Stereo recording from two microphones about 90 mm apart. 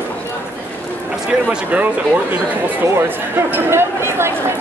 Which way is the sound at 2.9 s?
25° right (ahead or behind).